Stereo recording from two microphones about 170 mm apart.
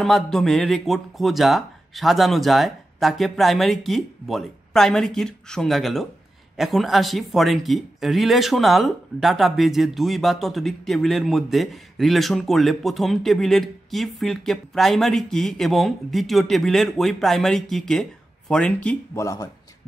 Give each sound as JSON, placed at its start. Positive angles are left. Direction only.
{"t": 0.0, "sound": "speech", "side_deg": 0}
{"t": 19.1, "sound": "speech", "side_deg": 20}